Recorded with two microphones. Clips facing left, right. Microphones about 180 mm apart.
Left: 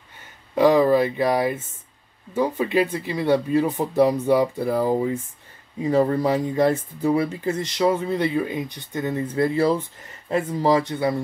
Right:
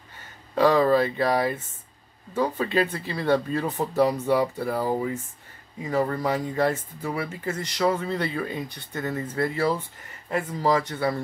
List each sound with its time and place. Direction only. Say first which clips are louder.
0.6 s speech: left 3 dB; 15° left (ahead or behind)